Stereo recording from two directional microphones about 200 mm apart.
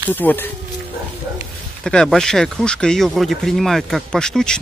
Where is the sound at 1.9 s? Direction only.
5° left (ahead or behind).